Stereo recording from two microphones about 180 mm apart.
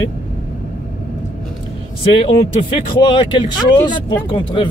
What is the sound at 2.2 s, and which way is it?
Speech, 30° left (ahead or behind).